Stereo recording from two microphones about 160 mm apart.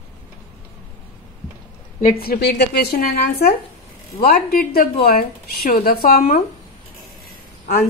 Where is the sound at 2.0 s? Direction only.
65° left (ahead or behind).